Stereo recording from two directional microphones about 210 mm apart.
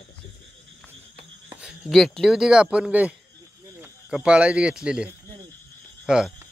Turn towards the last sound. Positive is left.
turn(degrees=-5)  # may be behind; listen again after turning